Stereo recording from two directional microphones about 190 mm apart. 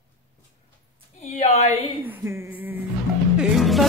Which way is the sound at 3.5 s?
Centre (ahead or behind).